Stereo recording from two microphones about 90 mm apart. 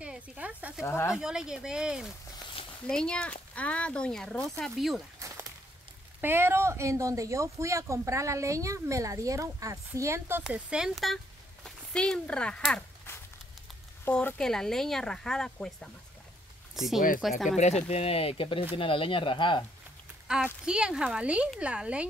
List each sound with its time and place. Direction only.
0.0 s a sound: 15° right (ahead or behind)
0.8 s speech: 30° left (ahead or behind)
1.1 s speech: 10° right (ahead or behind)
2.9 s speech: 10° left (ahead or behind)
6.2 s speech: 25° right (ahead or behind)
10.4 s speech: 10° right (ahead or behind)
11.6 s speech: 10° left (ahead or behind)
14.1 s speech: 25° left (ahead or behind)
14.4 s speech: 5° left (ahead or behind)
18.0 s speech: 90° left
18.8 s speech: 80° left
20.6 s speech: 10° right (ahead or behind)